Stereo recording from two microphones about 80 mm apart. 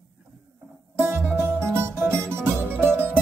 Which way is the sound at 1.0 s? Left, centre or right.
Right.